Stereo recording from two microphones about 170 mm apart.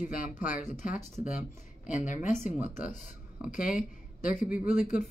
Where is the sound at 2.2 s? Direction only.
50° left (ahead or behind).